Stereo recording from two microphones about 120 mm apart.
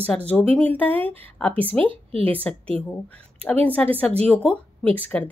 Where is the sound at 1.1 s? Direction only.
50° right (ahead or behind).